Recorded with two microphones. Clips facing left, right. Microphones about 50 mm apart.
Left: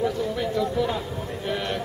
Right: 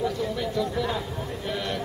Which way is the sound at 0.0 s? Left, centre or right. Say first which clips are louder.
Left 2 dB; centre.